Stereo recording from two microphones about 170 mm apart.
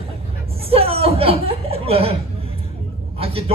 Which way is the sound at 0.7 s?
35° right (ahead or behind).